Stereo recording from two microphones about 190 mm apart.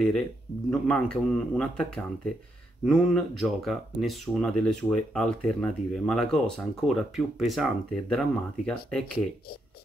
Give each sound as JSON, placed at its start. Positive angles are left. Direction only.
{"t": 0.7, "sound": "speech", "side_deg": 5}